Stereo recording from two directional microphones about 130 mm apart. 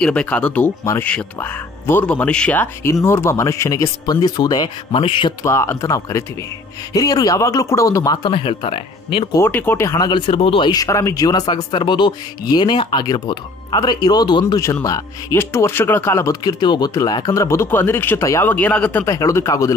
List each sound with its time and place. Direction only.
0.0 s speech: 10° left (ahead or behind); by 4.6 s 30° left (ahead or behind)
4.9 s speech: 45° left (ahead or behind)
5.4 s speech: 20° left (ahead or behind)
8.3 s speech: 45° left (ahead or behind)
9.5 s speech: 15° left (ahead or behind); by 10.7 s 45° left (ahead or behind)
10.7 s speech: 25° left (ahead or behind)
16.5 s speech: 35° left (ahead or behind); by 19.0 s 10° left (ahead or behind)
19.0 s speech: 25° left (ahead or behind)